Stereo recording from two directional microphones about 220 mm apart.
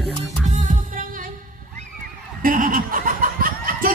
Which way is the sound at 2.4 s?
40° right (ahead or behind).